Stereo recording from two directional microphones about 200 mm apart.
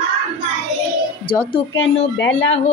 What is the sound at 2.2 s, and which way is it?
Speech, 70° left (ahead or behind).